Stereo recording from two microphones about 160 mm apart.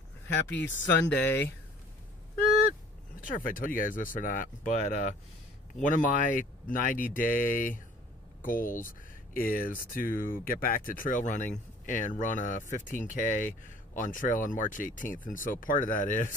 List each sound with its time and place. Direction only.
0.5 s speech: 10° left (ahead or behind)
3.2 s speech: 60° left (ahead or behind)